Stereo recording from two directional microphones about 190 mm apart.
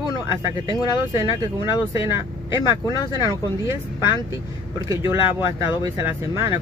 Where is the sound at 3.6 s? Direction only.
15° right (ahead or behind).